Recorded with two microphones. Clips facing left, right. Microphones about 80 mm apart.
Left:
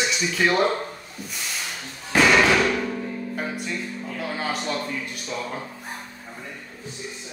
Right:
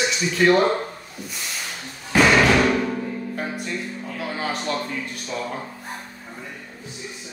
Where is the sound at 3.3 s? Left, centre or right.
Centre.